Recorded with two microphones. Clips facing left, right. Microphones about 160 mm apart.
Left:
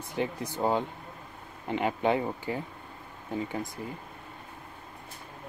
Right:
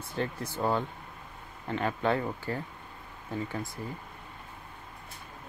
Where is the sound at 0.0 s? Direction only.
15° left (ahead or behind).